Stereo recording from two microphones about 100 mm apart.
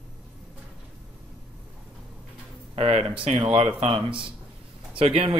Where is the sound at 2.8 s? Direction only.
80° right.